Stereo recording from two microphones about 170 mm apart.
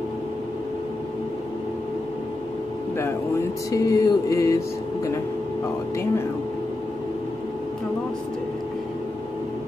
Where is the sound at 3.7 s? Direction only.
20° left (ahead or behind).